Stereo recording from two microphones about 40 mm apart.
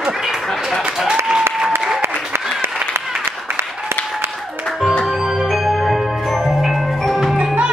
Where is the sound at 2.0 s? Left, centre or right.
Right.